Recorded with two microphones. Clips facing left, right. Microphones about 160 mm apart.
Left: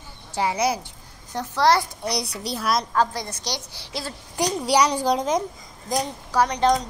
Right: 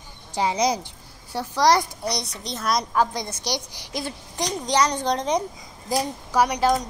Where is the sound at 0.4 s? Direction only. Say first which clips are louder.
Right 1 dB; 15° right (ahead or behind).